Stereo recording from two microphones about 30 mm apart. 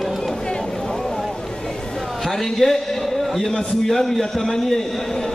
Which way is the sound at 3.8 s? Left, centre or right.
Centre.